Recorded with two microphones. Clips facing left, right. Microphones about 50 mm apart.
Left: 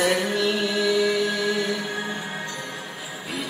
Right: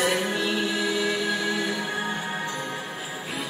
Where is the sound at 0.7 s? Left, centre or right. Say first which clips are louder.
Left 4 dB; right.